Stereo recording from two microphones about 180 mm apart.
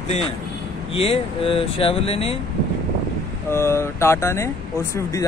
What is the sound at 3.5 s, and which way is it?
Speech, 15° left (ahead or behind).